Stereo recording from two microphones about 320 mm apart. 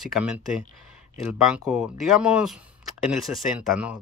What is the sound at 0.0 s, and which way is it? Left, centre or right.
Speech, centre.